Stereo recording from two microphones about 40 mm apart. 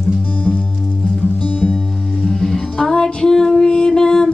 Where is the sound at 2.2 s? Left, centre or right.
Centre.